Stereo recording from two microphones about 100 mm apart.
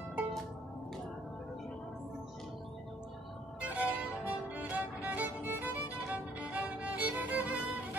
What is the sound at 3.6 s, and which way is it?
Music, 15° right (ahead or behind).